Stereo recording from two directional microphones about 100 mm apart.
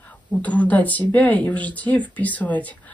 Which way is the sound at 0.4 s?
15° left (ahead or behind).